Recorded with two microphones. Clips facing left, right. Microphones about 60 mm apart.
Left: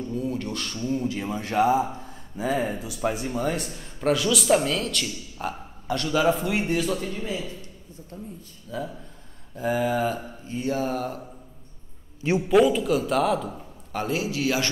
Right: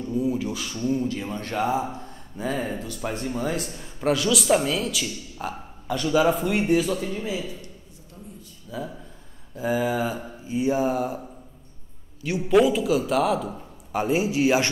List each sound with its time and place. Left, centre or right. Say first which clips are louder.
0.1 s speech: right 6 dB; centre
8.6 s a man's voice: left 1 dB; centre
12.2 s a man's voice: left 4 dB; left
12.4 s speech: right 1 dB; centre
13.9 s a man's voice: right 4 dB; right